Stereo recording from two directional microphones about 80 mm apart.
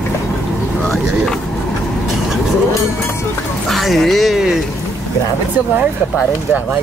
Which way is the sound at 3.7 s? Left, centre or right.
Centre.